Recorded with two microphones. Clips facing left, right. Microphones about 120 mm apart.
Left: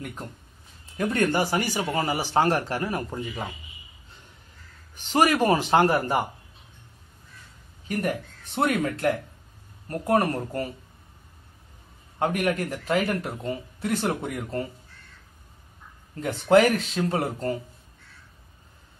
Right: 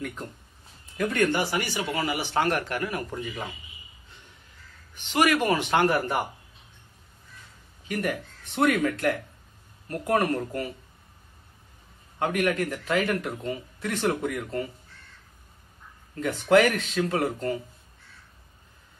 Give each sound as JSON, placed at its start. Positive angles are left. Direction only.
{"t": 0.9, "sound": "speech", "side_deg": 35}
{"t": 4.9, "sound": "speech", "side_deg": 40}
{"t": 7.9, "sound": "speech", "side_deg": 30}
{"t": 12.2, "sound": "speech", "side_deg": 35}
{"t": 16.2, "sound": "speech", "side_deg": 30}